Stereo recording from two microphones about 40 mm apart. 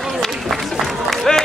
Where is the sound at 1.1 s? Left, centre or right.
Centre.